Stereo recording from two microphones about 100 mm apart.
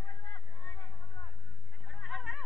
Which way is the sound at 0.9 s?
50° left (ahead or behind).